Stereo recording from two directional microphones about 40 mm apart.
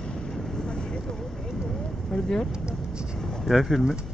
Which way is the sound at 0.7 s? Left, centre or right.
Left.